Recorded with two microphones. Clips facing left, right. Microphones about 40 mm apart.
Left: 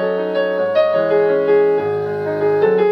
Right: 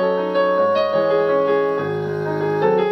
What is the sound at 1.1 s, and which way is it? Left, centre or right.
Music, centre.